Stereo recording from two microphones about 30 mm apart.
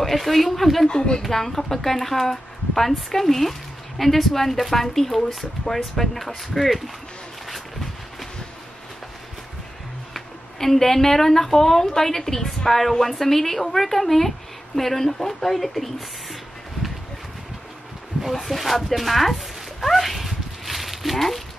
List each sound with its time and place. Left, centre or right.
0.0 s a woman's voice: centre
0.8 s a woman's voice: left
1.2 s a woman's voice: centre
7.4 s a sound: centre
10.1 s a woman's voice: centre
18.3 s a sound: centre